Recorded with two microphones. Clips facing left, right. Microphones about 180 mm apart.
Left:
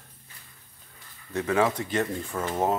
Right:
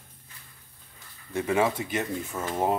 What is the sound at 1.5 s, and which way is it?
Speech, 20° right (ahead or behind).